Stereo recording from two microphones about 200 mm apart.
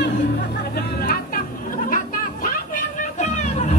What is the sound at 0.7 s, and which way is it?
Chatter, 50° left (ahead or behind).